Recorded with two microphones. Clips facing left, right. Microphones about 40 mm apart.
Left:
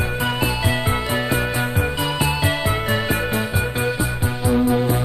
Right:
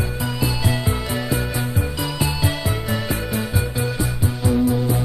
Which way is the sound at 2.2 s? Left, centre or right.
Left.